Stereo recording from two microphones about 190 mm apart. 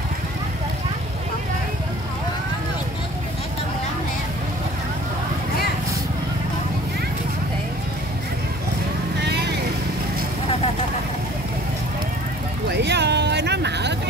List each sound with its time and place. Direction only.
9.2 s vehicle: 60° right (ahead or behind)
12.6 s vehicle: 65° right (ahead or behind)